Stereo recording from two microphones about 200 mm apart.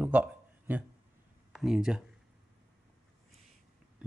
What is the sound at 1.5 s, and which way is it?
Speech, centre (ahead or behind).